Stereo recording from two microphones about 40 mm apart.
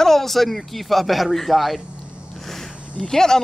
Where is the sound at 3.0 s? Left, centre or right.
Centre.